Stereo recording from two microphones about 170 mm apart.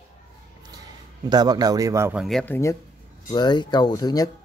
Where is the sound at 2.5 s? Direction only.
15° left (ahead or behind).